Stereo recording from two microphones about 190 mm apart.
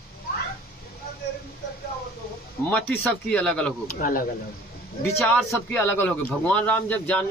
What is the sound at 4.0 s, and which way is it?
Speech, 45° left (ahead or behind).